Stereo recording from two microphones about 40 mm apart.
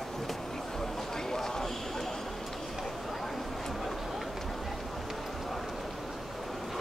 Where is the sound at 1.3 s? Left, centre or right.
Centre.